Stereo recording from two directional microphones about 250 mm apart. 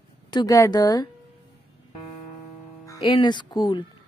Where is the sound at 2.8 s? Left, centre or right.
Centre.